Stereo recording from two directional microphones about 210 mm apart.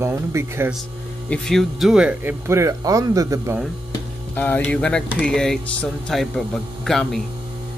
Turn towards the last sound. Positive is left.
turn(degrees=0)  # may be behind; listen again after turning